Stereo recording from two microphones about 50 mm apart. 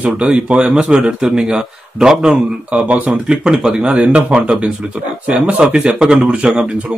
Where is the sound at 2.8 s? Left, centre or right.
Right.